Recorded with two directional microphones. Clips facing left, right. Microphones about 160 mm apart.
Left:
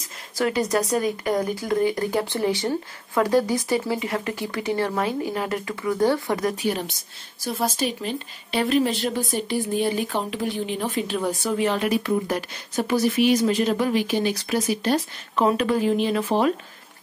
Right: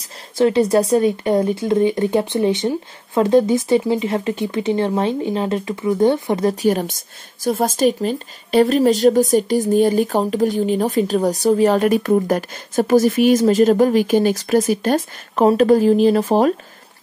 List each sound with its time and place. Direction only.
0.4 s speech: 30° right (ahead or behind)
6.5 s a woman's voice: 40° right (ahead or behind)